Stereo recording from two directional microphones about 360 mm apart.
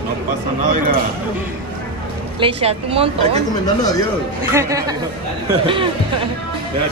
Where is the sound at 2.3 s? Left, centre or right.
Centre.